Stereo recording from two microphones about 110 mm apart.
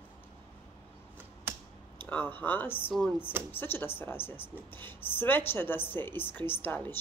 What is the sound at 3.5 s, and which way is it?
A woman's voice, 20° left (ahead or behind).